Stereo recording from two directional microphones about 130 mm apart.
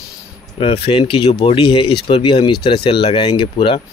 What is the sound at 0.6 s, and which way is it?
Speech, 45° left (ahead or behind).